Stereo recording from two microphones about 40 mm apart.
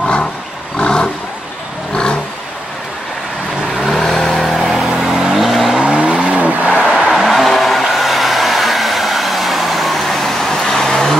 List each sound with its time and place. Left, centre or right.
0.7 s roar: left
3.7 s vehicle: centre
5.8 s vehicle: centre
6.6 s a sound: right
7.1 s vehicle: centre
7.8 s hair dryer: centre